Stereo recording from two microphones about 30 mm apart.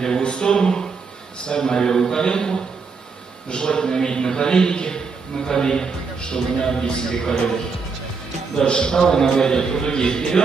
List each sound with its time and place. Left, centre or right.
0.2 s a man's voice: left
8.5 s a man's voice: left